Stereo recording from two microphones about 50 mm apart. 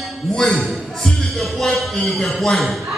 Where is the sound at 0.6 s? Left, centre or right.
Centre.